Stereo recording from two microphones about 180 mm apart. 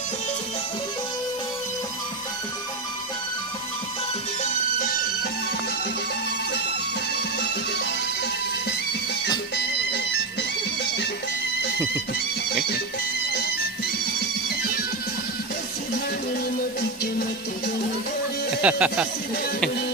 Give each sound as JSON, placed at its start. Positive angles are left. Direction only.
{"t": 7.3, "sound": "music", "side_deg": 65}
{"t": 14.6, "sound": "music", "side_deg": 60}
{"t": 18.6, "sound": "speech", "side_deg": -10}